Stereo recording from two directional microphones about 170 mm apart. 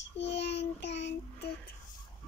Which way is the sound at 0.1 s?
90° left.